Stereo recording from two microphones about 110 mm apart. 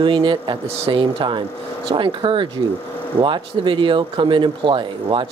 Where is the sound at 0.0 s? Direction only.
45° right (ahead or behind).